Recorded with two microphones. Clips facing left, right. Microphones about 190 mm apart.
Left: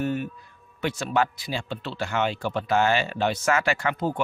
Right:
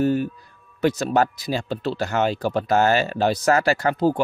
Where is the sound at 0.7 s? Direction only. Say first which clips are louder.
Right 5 dB; 40° right (ahead or behind).